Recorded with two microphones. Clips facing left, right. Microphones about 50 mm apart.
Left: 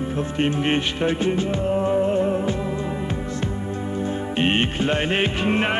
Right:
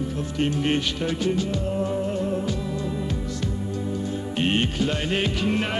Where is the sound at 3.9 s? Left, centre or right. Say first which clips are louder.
Left 6 dB; left.